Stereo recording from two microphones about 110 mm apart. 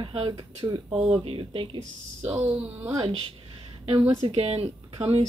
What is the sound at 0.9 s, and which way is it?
Speech, 65° right (ahead or behind).